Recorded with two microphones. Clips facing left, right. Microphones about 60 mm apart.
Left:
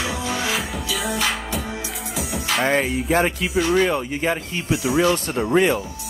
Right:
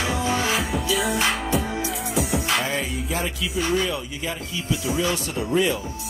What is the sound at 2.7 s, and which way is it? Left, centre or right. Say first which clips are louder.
Music: left 7 dB; left.